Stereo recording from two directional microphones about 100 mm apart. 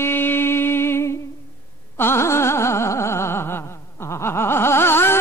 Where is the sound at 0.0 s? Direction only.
20° left (ahead or behind).